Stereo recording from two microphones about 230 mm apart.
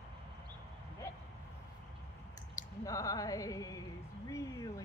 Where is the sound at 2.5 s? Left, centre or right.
Centre.